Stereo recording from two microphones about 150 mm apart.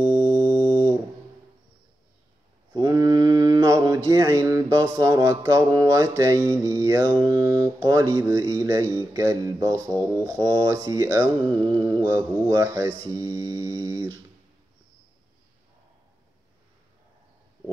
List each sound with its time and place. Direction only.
0.0 s music: 30° right (ahead or behind)
2.7 s mantra: 25° right (ahead or behind)